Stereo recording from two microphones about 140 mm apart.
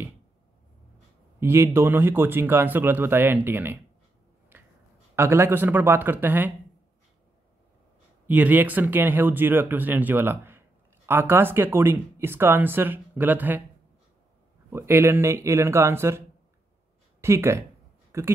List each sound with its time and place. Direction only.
1.4 s speech: 15° right (ahead or behind)
4.5 s a sound: 15° right (ahead or behind)
5.1 s speech: 15° right (ahead or behind)
8.3 s speech: 10° right (ahead or behind)
14.7 s speech: 15° right (ahead or behind)
17.2 s speech: 20° right (ahead or behind)